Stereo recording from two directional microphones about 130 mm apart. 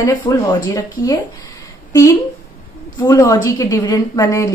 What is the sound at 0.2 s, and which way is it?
Speech, 35° left (ahead or behind).